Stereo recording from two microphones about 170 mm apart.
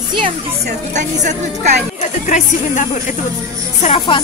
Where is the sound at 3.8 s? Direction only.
30° left (ahead or behind).